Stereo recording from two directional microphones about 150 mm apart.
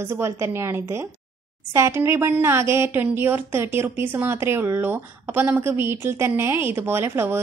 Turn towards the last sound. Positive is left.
turn(degrees=-15)  # may be behind; listen again after turning